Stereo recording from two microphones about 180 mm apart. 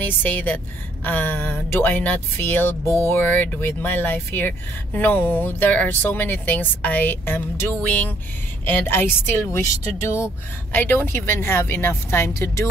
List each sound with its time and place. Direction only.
0.0 s speech: 10° left (ahead or behind)